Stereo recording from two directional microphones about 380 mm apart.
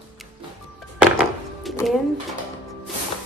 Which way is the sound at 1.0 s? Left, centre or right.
Centre.